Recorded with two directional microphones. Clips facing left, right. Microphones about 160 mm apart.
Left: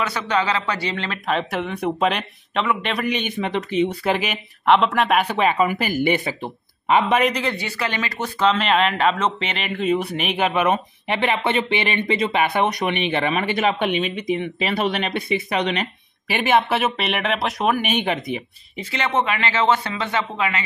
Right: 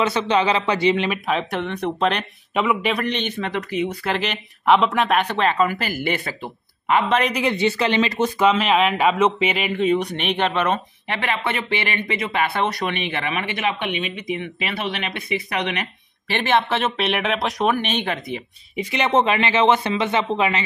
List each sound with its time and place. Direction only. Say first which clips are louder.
0.0 s speech: right 3 dB; 25° right (ahead or behind)
1.2 s speech: even; centre (ahead or behind)
2.5 s speech: right 2 dB; 10° right (ahead or behind); by 4.1 s 25° left (ahead or behind)
4.1 s speech: left 2 dB; 10° left (ahead or behind)
4.6 s speech: even; centre (ahead or behind); by 7.2 s 20° left (ahead or behind)
7.3 s speech: right 5 dB; 20° right (ahead or behind); by 11.1 s 15° left (ahead or behind)
11.1 s speech: left 4 dB; 25° left (ahead or behind)
16.3 s speech: left 1 dB; 10° left (ahead or behind)
18.8 s speech: right 3 dB; 15° right (ahead or behind)